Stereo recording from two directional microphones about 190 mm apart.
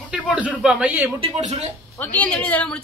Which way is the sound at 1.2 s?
35° right (ahead or behind).